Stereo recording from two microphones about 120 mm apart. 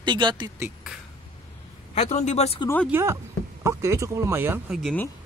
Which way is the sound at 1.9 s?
65° left (ahead or behind).